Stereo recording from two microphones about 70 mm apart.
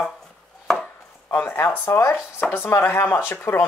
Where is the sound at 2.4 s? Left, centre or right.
Left.